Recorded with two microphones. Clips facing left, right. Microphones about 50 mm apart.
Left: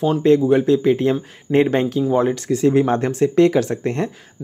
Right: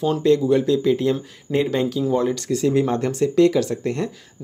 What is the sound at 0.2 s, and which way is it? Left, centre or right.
Speech, left.